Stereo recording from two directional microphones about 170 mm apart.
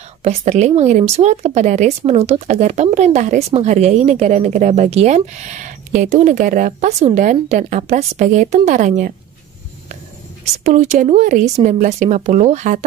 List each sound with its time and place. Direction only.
0.2 s speech: 40° right (ahead or behind)
10.6 s speech: 45° right (ahead or behind)